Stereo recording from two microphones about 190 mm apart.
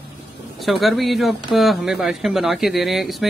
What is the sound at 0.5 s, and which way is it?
Speech, centre (ahead or behind).